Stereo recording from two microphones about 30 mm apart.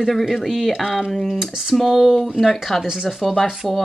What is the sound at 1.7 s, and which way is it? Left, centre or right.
Speech, centre.